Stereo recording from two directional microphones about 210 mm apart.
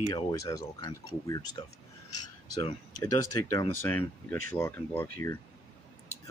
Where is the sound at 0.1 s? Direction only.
15° left (ahead or behind).